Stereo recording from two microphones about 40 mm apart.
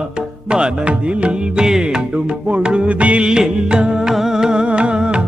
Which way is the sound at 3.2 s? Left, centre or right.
Centre.